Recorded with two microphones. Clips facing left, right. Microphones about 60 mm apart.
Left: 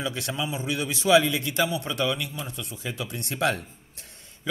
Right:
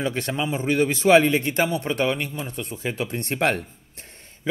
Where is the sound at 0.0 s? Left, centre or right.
Right.